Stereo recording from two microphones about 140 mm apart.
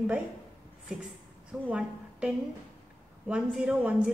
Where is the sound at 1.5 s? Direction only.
5° right (ahead or behind).